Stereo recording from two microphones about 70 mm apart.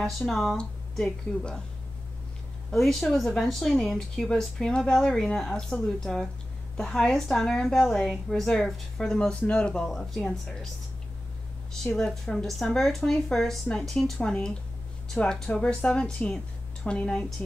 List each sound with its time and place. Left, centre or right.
0.0 s speech: centre
0.6 s speech: centre
2.7 s speech: centre
9.3 s speech: centre
9.8 s speech: centre
11.8 s speech: centre